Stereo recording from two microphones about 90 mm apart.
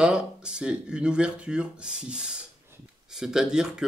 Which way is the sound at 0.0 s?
10° right (ahead or behind).